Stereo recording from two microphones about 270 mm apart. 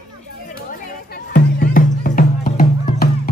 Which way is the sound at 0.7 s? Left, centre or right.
Left.